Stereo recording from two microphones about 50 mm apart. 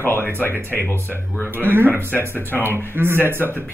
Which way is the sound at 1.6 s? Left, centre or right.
Right.